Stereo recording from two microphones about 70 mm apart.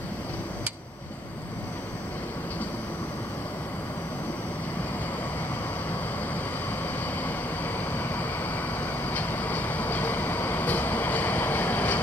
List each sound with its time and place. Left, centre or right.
7.2 s vehicle: left